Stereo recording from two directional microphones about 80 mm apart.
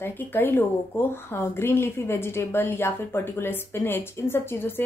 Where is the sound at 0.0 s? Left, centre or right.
Left.